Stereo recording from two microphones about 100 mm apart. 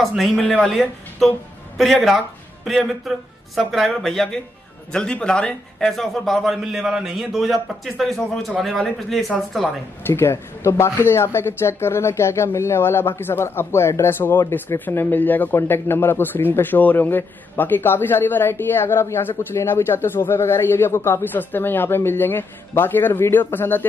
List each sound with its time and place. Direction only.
0.0 s a man's voice: centre (ahead or behind)
10.0 s speech: 25° left (ahead or behind)